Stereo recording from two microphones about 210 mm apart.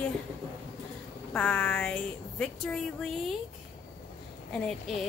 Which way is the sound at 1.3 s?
5° left (ahead or behind).